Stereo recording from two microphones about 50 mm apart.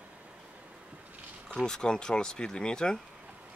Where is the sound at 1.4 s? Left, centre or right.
Centre.